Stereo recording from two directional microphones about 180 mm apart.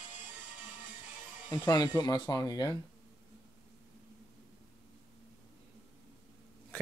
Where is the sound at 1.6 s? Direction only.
20° left (ahead or behind).